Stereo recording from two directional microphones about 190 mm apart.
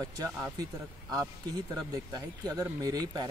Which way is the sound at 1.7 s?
20° right (ahead or behind).